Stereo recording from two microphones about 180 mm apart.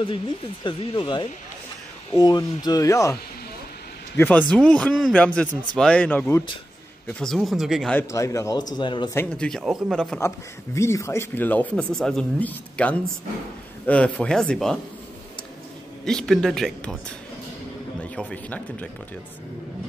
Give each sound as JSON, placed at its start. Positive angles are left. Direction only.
{"t": 0.7, "sound": "speech", "side_deg": 25}
{"t": 4.2, "sound": "speech", "side_deg": 10}
{"t": 8.1, "sound": "speech", "side_deg": 15}
{"t": 9.1, "sound": "speech", "side_deg": 10}
{"t": 9.5, "sound": "speech", "side_deg": 0}
{"t": 10.2, "sound": "speech", "side_deg": 15}
{"t": 16.1, "sound": "speech", "side_deg": 0}
{"t": 18.1, "sound": "speech", "side_deg": 10}